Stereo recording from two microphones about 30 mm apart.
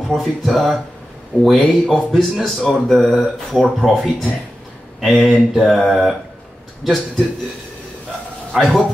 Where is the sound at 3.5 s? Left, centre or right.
Right.